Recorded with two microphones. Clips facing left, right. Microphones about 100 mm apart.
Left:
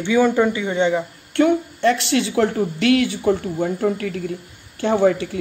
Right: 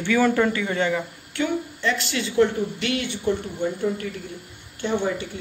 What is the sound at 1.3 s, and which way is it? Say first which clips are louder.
A woman's voice: left 8 dB; 60° left (ahead or behind).